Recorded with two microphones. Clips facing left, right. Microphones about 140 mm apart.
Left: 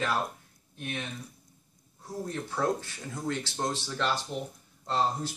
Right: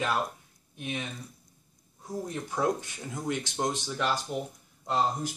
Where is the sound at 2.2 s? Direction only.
15° right (ahead or behind).